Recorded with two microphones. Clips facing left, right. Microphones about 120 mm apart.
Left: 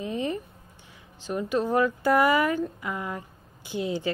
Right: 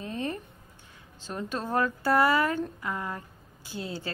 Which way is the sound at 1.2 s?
10° left (ahead or behind).